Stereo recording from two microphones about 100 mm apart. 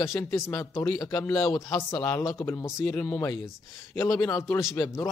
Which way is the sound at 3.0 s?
15° left (ahead or behind).